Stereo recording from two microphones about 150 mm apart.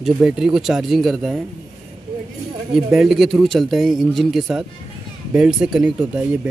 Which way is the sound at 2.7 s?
Centre (ahead or behind).